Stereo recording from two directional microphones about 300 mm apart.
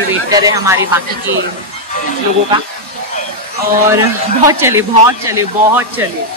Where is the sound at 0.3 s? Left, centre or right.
Centre.